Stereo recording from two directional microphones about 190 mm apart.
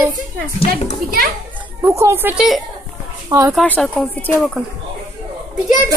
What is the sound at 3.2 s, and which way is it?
Speech, 15° right (ahead or behind).